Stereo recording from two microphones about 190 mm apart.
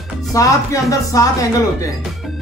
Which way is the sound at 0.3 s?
15° left (ahead or behind).